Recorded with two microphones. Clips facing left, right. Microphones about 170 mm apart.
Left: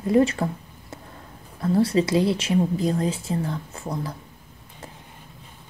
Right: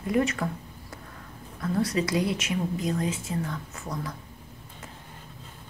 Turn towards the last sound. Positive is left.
turn(degrees=30)  # may be behind; listen again after turning